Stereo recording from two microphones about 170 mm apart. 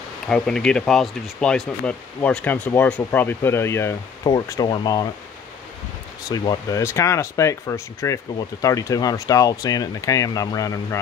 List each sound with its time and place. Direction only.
0.3 s speech: 5° left (ahead or behind); by 5.0 s 25° left (ahead or behind)
6.3 s speech: 25° left (ahead or behind)